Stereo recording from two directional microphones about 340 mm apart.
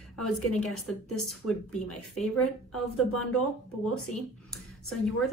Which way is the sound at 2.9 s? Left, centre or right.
Left.